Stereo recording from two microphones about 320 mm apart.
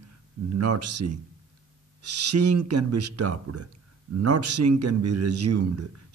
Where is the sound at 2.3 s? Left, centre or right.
Right.